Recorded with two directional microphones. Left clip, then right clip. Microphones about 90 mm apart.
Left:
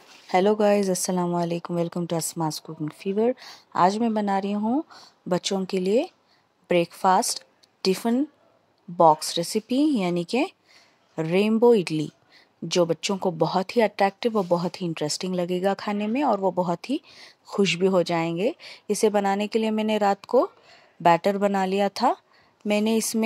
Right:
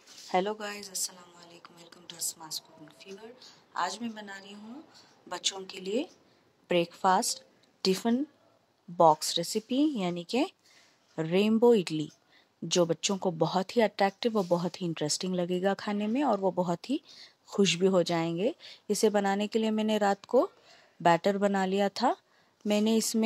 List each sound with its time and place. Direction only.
0.3 s a woman's voice: 35° left (ahead or behind)